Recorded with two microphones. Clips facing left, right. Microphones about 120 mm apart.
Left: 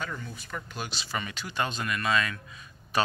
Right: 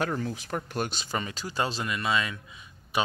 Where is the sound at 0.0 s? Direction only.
85° right.